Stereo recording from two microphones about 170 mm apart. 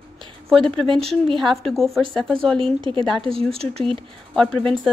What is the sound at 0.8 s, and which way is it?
Speech, 30° right (ahead or behind).